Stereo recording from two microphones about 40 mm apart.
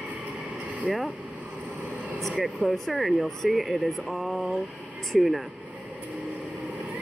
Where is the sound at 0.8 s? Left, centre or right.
Centre.